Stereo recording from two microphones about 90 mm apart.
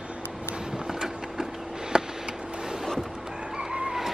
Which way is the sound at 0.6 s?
5° right (ahead or behind).